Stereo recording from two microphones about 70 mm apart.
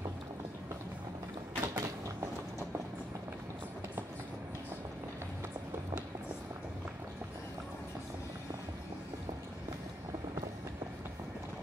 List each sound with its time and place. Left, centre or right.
1.6 s mechanisms: right